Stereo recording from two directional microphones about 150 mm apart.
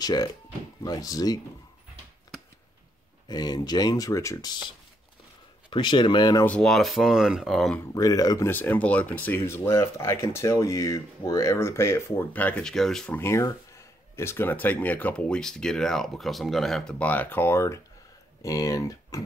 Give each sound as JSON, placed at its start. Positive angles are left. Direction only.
{"t": 0.0, "sound": "speech", "side_deg": 25}
{"t": 3.3, "sound": "speech", "side_deg": 25}
{"t": 6.4, "sound": "speech", "side_deg": 5}
{"t": 7.9, "sound": "speech", "side_deg": 25}
{"t": 8.5, "sound": "speech", "side_deg": 10}
{"t": 13.2, "sound": "speech", "side_deg": 20}